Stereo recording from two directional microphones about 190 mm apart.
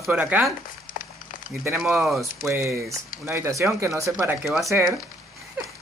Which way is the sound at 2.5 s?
15° right (ahead or behind).